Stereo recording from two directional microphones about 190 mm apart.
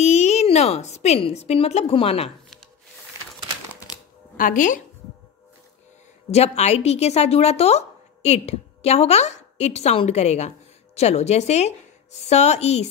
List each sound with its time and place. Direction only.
0.0 s a woman's voice: 35° left (ahead or behind)
4.4 s a woman's voice: 45° left (ahead or behind)
6.3 s a woman's voice: 35° left (ahead or behind)